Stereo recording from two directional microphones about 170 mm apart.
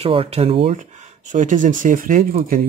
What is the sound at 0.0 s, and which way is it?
Speech, 35° right (ahead or behind).